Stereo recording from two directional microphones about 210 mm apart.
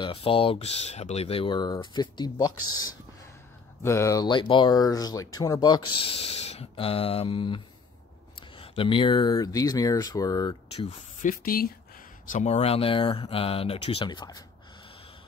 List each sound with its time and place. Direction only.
0.0 s speech: 25° left (ahead or behind)
2.5 s speech: 90° left
3.8 s speech: 15° left (ahead or behind)
10.9 s speech: 40° left (ahead or behind)
12.3 s speech: 35° left (ahead or behind)